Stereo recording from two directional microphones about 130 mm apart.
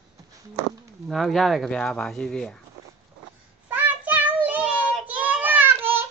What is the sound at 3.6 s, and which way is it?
Child singing, 10° right (ahead or behind).